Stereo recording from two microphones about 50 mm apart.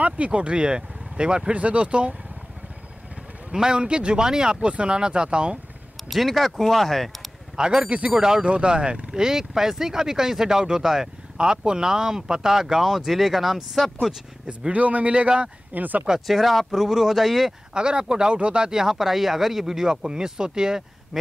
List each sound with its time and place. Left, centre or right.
0.0 s speech: right
3.5 s speech: centre
6.0 s speech: centre
7.5 s speech: centre
14.7 s speech: right
15.7 s speech: right
16.3 s speech: centre
17.7 s speech: centre